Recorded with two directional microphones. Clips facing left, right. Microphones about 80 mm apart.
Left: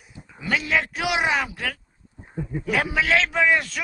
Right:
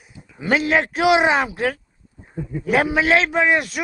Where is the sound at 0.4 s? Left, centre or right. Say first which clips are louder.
Right 5 dB; right.